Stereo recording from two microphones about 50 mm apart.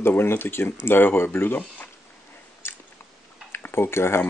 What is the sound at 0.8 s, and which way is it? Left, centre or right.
Speech, left.